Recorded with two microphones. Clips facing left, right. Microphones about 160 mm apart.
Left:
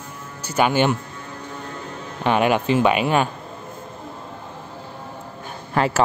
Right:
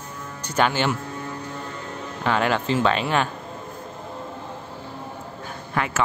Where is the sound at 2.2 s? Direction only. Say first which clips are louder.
Left 4 dB; 15° left (ahead or behind).